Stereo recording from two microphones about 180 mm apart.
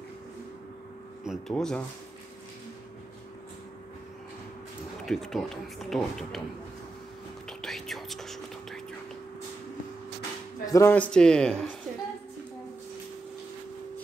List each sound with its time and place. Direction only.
1.2 s speech: centre (ahead or behind)
5.0 s speech: centre (ahead or behind)
7.4 s whispering: centre (ahead or behind)
10.6 s speech: 15° left (ahead or behind)